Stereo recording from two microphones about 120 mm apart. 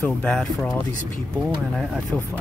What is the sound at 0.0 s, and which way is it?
Speech, 5° left (ahead or behind).